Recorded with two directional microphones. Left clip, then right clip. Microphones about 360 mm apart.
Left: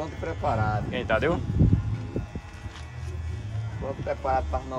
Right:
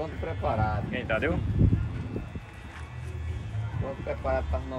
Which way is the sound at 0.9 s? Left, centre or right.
Centre.